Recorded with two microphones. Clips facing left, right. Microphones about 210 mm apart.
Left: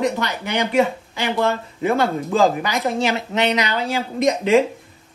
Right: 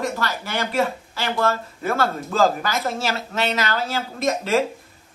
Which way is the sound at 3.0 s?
15° left (ahead or behind).